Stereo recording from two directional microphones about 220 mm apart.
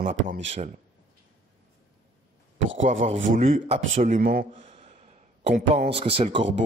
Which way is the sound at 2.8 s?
30° right (ahead or behind).